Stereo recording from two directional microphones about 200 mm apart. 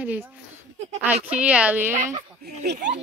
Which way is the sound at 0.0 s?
10° right (ahead or behind).